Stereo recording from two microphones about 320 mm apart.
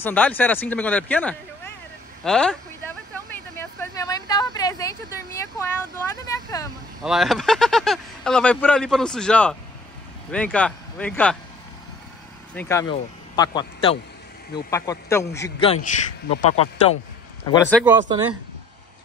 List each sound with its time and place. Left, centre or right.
0.0 s speech: centre
3.5 s a sound: centre
6.2 s speech: centre
7.0 s speech: centre
12.5 s speech: centre
15.6 s speech: centre
17.5 s speech: centre